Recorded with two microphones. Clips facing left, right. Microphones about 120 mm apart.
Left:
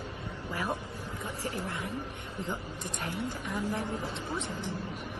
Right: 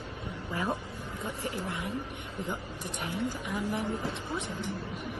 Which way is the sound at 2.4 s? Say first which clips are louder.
Left 1 dB; 15° right (ahead or behind).